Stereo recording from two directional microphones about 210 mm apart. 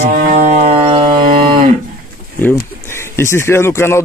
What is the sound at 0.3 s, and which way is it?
Music, 35° right (ahead or behind).